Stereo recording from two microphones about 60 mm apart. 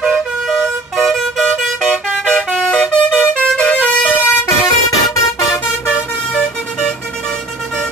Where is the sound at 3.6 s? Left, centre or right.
Left.